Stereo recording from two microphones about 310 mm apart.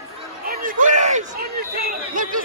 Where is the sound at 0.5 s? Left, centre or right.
Right.